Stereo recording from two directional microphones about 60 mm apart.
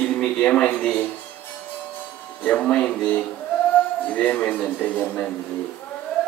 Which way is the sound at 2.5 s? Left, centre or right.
Centre.